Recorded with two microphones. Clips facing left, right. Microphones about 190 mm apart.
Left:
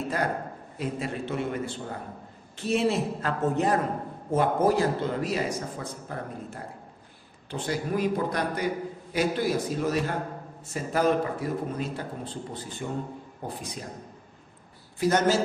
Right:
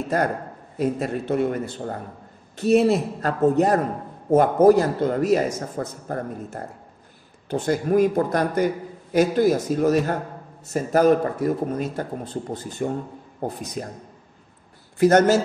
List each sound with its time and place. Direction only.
0.7 s a man's voice: 45° right (ahead or behind)
15.0 s a man's voice: 50° right (ahead or behind)